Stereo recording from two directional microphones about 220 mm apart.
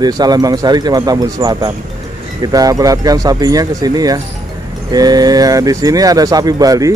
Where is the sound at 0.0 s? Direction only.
20° right (ahead or behind).